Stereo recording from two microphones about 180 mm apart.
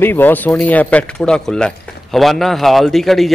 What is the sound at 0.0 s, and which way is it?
A man's voice, 10° left (ahead or behind).